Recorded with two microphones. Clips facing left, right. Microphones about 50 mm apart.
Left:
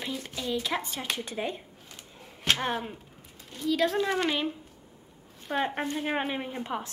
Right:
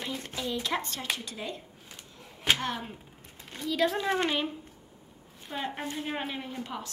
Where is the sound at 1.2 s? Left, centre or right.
Left.